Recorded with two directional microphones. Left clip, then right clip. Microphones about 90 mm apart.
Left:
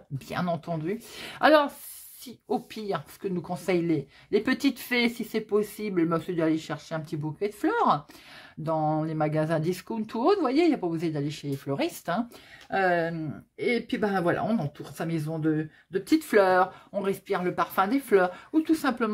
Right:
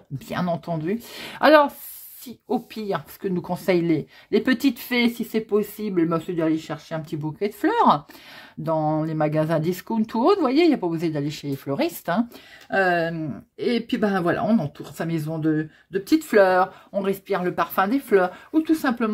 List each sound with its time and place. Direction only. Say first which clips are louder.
0.3 s speech: right 4 dB; 30° right (ahead or behind)
2.2 s speech: right 3 dB; 15° right (ahead or behind)
3.2 s speech: right 5 dB; 35° right (ahead or behind)
7.3 s speech: right 5 dB; 40° right (ahead or behind)
8.6 s speech: right 4 dB; 25° right (ahead or behind)